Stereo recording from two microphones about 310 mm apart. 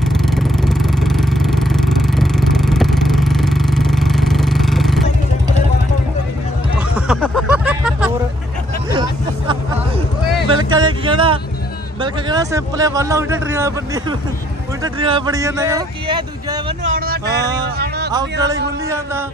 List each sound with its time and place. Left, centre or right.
0.1 s vehicle: centre
6.9 s a sound: centre
10.5 s a sound: centre
12.0 s a man's voice: centre
16.9 s speech: right
18.1 s a man's voice: centre